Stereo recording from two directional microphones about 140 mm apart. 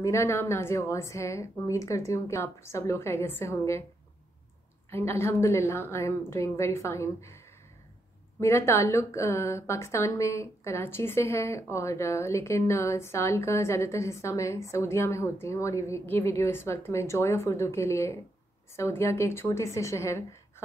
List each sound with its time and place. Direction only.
0.0 s a woman's voice: 20° left (ahead or behind)
4.9 s a woman's voice: 20° left (ahead or behind)
8.4 s a woman's voice: 20° left (ahead or behind)